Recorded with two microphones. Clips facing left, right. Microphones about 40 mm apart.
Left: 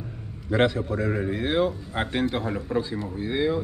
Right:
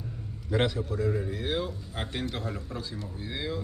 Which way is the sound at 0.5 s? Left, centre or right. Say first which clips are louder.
Left 6 dB; left.